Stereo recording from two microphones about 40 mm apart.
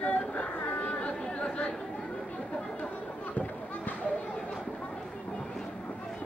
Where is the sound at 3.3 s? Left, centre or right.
Left.